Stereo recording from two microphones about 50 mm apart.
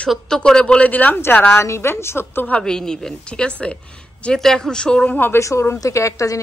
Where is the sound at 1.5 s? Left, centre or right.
Left.